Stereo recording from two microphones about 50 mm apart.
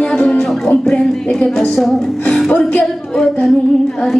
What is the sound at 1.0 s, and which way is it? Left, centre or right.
Female singing, centre.